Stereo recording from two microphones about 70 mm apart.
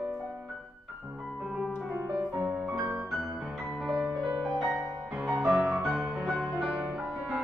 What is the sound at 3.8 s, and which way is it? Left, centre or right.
Music, centre.